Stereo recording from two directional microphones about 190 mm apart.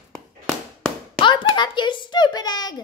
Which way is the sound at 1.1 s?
25° left (ahead or behind).